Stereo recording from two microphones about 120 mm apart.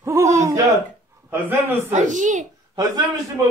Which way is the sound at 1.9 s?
90° right.